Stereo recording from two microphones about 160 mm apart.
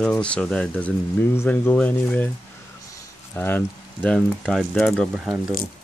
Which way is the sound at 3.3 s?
10° left (ahead or behind).